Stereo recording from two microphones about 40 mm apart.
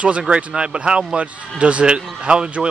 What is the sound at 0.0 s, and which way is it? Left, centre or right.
A man's voice, right.